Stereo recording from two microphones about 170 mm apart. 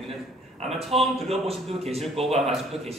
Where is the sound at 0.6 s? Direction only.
35° right (ahead or behind).